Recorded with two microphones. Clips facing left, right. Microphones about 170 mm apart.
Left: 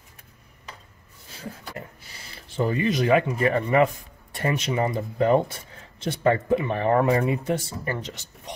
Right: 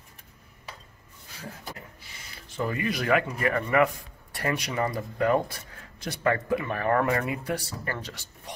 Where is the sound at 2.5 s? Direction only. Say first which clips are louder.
Left 6 dB; 25° left (ahead or behind).